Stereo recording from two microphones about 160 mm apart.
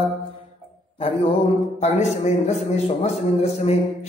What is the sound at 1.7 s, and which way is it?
A man's voice, 45° left (ahead or behind).